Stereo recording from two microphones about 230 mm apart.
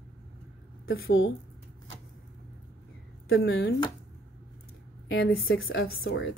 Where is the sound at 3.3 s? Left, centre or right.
Left.